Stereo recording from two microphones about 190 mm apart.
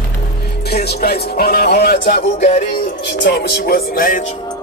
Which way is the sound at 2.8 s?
65° left (ahead or behind).